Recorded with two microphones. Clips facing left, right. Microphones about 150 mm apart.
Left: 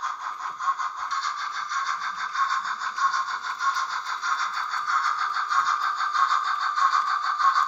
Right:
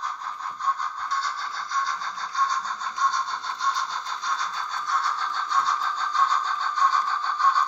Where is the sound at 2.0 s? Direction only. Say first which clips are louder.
Right 2 dB; 15° right (ahead or behind).